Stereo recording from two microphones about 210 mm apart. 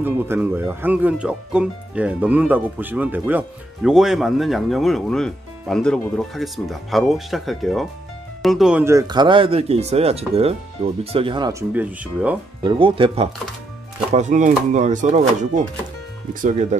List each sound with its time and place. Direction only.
0.0 s speech: 10° right (ahead or behind)
11.7 s speech: 5° right (ahead or behind)
12.6 s speech: 25° right (ahead or behind)